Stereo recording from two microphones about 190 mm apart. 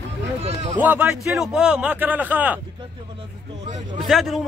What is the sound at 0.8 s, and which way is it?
A man's voice, 10° right (ahead or behind).